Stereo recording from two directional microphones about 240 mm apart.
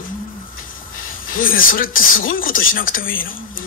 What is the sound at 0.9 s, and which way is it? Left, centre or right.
A woman's voice, left.